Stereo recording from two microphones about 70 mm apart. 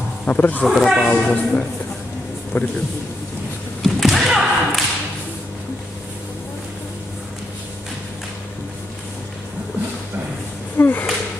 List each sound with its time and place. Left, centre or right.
0.3 s speech: left
0.7 s speech: centre
1.0 s speech: left
3.8 s thump: centre
10.8 s a sound: left